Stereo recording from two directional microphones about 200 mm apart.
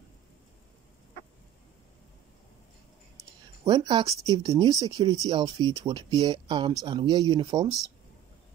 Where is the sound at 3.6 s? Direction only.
20° right (ahead or behind).